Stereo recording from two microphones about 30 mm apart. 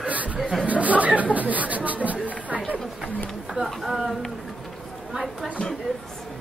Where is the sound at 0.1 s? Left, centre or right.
Right.